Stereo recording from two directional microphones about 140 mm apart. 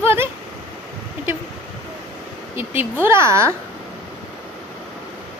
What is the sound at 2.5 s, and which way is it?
Speech, 15° right (ahead or behind).